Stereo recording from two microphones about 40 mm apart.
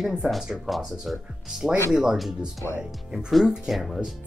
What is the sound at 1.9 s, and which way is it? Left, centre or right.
Speech, centre.